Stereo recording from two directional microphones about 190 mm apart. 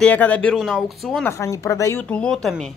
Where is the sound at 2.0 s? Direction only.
5° left (ahead or behind).